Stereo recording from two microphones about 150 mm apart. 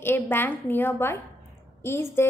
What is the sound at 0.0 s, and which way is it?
A woman's voice, 15° left (ahead or behind).